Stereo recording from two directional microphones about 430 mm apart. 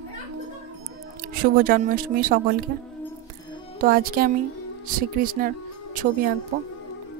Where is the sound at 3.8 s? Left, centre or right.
Centre.